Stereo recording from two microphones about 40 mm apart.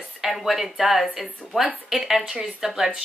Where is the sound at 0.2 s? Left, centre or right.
Centre.